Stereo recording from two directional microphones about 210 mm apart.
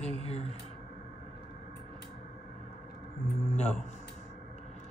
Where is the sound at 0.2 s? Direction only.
30° left (ahead or behind).